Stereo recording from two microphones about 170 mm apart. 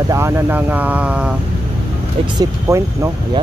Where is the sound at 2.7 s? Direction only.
15° right (ahead or behind).